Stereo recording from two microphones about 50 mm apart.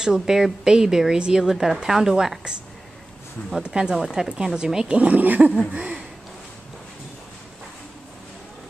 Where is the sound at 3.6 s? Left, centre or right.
Centre.